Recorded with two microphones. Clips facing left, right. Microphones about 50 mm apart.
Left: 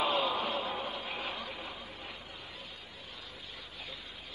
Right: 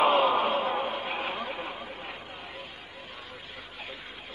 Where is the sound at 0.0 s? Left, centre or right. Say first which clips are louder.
Right 8 dB; right.